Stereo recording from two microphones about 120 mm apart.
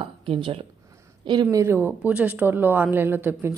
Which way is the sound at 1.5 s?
20° right (ahead or behind).